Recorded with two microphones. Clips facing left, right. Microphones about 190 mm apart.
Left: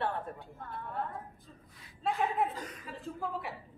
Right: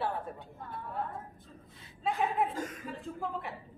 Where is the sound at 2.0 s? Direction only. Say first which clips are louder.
Right 1 dB; centre (ahead or behind).